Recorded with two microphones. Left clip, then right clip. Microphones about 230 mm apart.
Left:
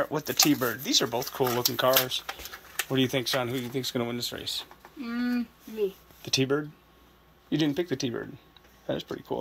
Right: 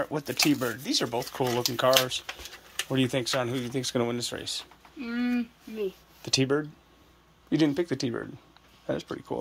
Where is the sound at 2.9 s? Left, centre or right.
Centre.